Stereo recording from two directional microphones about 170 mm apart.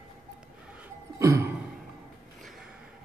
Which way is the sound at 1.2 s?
20° right (ahead or behind).